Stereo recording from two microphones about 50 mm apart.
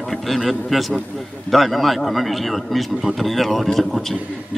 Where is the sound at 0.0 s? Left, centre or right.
Centre.